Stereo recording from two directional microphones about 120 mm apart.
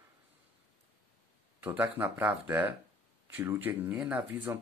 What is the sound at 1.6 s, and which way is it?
Speech, 15° right (ahead or behind).